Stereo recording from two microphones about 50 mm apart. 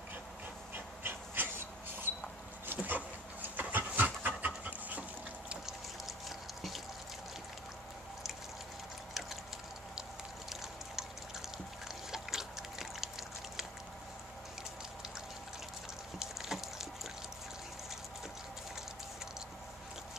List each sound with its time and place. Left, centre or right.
0.7 s dog: right
3.5 s pant: right
4.6 s dog: right
5.7 s pour: centre
12.1 s a sound: centre
16.2 s a sound: centre